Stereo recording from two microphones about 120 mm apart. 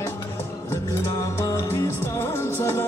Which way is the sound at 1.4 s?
25° left (ahead or behind).